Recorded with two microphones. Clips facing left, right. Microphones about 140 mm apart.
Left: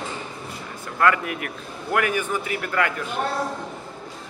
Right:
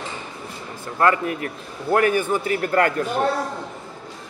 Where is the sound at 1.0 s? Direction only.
30° right (ahead or behind).